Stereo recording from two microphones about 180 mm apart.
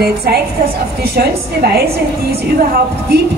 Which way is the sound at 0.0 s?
60° right (ahead or behind).